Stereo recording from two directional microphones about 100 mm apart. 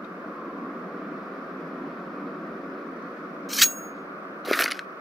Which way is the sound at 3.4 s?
Centre (ahead or behind).